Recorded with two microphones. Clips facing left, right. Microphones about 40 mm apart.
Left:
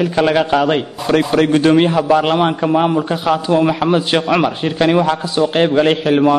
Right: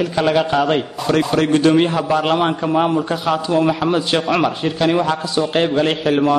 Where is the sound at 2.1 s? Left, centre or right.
Centre.